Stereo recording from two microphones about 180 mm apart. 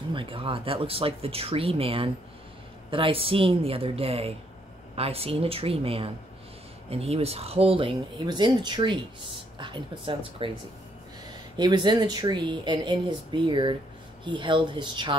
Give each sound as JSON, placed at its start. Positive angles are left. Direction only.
{"t": 0.1, "sound": "speech", "side_deg": -30}
{"t": 11.5, "sound": "speech", "side_deg": -25}